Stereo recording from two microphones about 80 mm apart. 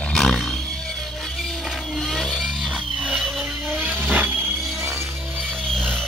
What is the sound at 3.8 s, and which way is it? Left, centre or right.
Vehicle, right.